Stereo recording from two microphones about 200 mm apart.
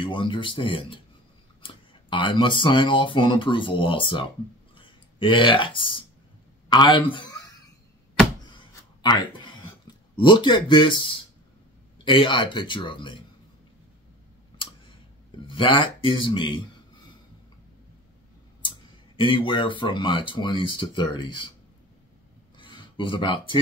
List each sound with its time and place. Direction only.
0.0 s a man's voice: 25° left (ahead or behind)
9.0 s a sound: 20° left (ahead or behind)
12.0 s speech: 25° left (ahead or behind)
15.4 s speech: 25° left (ahead or behind)
18.6 s speech: 25° left (ahead or behind)
22.6 s speech: 25° left (ahead or behind)